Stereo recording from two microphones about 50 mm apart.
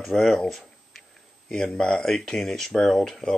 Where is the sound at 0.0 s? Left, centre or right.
Centre.